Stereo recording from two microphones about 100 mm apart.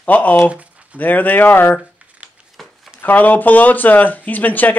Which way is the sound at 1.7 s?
10° right (ahead or behind).